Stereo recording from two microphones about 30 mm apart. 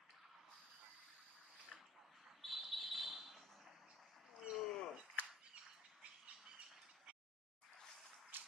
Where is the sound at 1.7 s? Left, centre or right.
Centre.